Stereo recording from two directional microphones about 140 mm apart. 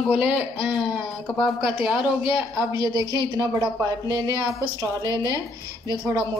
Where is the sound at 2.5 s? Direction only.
25° right (ahead or behind).